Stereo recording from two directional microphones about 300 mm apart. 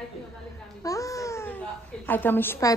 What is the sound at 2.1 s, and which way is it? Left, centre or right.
Speech, centre.